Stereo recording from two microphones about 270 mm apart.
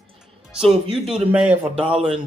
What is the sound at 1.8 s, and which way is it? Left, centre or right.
Speech, right.